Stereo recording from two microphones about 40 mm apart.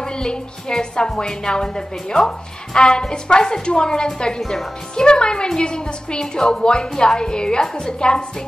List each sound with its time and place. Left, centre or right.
0.0 s a woman's voice: centre
4.4 s speech: centre
4.9 s a woman's voice: left